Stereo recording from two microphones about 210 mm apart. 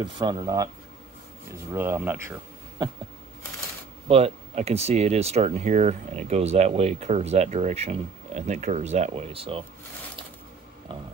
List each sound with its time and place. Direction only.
0.0 s speech: 20° right (ahead or behind)
4.1 s speech: 30° right (ahead or behind)